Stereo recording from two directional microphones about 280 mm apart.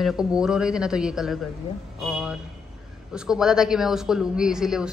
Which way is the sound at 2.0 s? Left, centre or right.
Centre.